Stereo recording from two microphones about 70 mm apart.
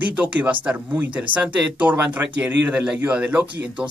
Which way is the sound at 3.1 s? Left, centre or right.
Centre.